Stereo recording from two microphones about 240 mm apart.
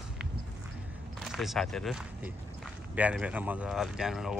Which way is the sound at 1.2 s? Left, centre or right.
Centre.